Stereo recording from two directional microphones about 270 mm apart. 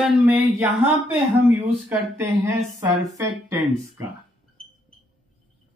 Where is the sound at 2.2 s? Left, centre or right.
Centre.